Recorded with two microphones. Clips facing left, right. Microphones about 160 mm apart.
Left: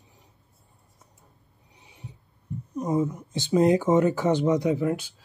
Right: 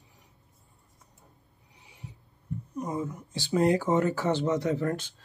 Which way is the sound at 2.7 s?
20° left (ahead or behind).